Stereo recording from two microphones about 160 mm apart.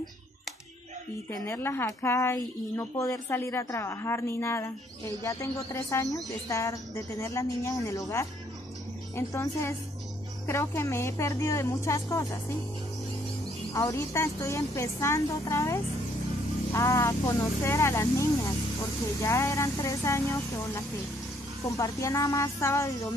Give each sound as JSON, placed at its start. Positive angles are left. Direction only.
{"t": 1.3, "sound": "a woman's voice", "side_deg": 15}
{"t": 13.7, "sound": "a woman's voice", "side_deg": 20}